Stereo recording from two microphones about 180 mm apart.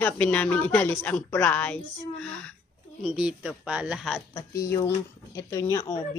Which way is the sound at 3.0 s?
5° right (ahead or behind).